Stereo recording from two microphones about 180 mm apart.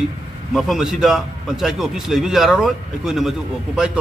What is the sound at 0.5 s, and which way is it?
A man's voice, centre (ahead or behind).